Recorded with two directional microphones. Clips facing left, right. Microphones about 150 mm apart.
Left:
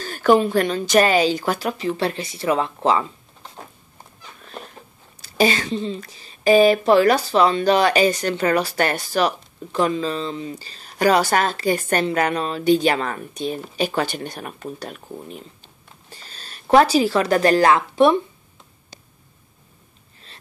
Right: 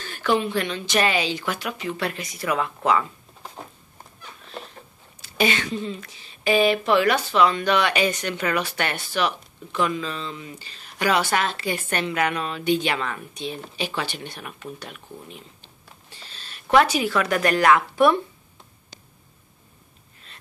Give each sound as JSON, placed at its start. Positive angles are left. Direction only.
{"t": 0.0, "sound": "speech", "side_deg": 40}
{"t": 5.2, "sound": "speech", "side_deg": 35}